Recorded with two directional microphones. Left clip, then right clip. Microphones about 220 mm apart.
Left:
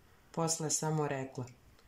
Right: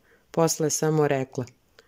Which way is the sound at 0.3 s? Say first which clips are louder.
Right 12 dB; 45° right (ahead or behind).